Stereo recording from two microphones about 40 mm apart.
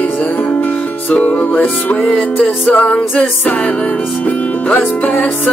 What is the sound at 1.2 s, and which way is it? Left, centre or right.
Music, left.